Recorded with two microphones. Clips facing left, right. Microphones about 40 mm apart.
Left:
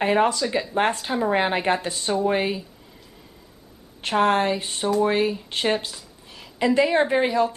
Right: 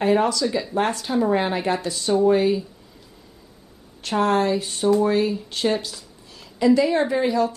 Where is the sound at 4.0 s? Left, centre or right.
Left.